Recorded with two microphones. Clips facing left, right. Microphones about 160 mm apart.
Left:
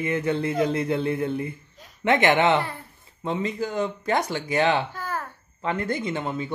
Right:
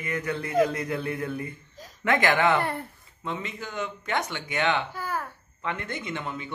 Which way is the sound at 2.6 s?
60° right (ahead or behind).